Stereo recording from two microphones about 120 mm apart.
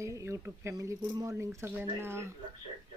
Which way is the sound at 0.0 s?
25° right (ahead or behind).